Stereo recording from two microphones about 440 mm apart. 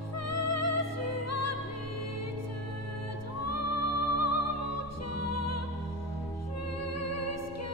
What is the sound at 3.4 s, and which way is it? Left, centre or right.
Music, left.